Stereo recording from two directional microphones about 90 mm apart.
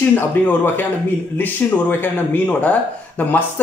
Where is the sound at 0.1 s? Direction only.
20° left (ahead or behind).